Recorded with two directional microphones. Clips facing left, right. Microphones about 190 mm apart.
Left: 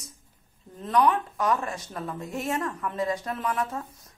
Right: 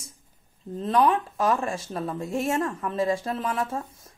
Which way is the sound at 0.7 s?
25° right (ahead or behind).